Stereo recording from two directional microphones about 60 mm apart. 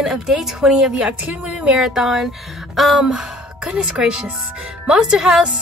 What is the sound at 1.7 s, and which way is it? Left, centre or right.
A woman's voice, centre.